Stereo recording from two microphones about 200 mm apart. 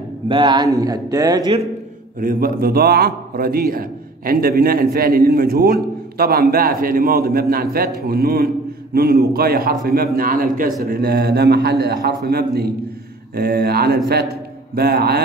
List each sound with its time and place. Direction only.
0.3 s speech: 20° right (ahead or behind)
2.1 s a man's voice: 45° right (ahead or behind)